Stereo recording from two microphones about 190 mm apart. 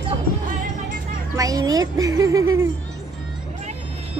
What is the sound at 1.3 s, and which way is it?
A child's voice, 20° right (ahead or behind).